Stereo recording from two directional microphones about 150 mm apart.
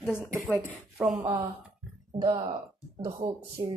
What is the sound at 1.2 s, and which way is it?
Speech, 25° right (ahead or behind).